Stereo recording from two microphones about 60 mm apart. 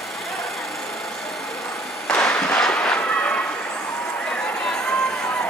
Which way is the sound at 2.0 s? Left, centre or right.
Centre.